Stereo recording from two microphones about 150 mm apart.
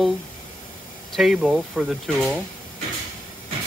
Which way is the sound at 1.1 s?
Centre (ahead or behind).